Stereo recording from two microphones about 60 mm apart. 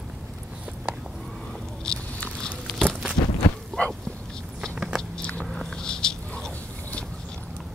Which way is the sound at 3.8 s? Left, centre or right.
Left.